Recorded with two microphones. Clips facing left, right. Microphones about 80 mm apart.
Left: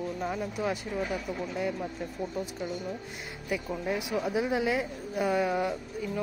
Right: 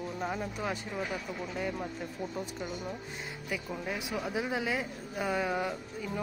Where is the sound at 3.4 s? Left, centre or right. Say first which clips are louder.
Left 5 dB; centre.